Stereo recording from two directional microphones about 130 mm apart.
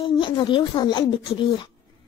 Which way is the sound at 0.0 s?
35° left (ahead or behind).